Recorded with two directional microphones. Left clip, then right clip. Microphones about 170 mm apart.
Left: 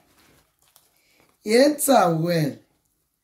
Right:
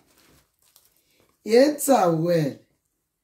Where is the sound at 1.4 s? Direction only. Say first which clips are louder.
Even; 15° left (ahead or behind).